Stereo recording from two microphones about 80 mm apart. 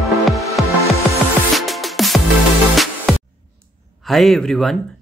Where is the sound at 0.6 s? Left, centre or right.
Centre.